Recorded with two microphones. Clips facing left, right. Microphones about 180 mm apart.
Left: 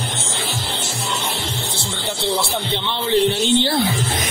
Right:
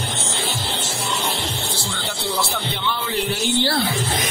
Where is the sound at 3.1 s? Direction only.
25° left (ahead or behind).